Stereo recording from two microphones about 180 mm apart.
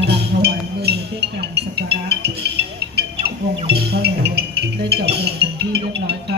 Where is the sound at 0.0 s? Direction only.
65° right (ahead or behind).